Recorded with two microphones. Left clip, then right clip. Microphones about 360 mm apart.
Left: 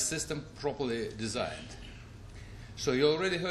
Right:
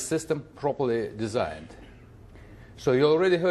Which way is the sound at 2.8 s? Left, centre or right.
Right.